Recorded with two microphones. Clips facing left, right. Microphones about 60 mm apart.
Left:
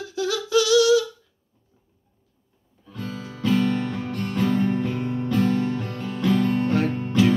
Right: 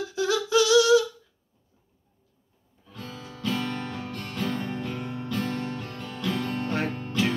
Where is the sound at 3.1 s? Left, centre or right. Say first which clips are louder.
Left 7 dB; left.